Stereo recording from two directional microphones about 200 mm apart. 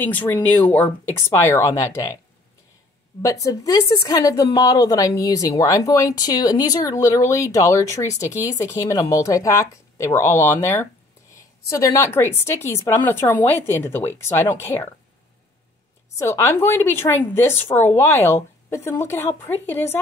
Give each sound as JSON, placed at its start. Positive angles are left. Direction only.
{"t": 0.0, "sound": "a woman's voice", "side_deg": 10}
{"t": 3.2, "sound": "a woman's voice", "side_deg": 15}
{"t": 16.2, "sound": "a woman's voice", "side_deg": 15}